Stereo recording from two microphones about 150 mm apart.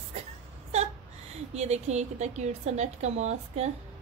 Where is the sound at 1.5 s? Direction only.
45° right (ahead or behind).